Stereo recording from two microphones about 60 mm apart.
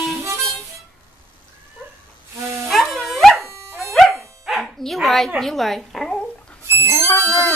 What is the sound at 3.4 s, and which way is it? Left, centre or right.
Dog, right.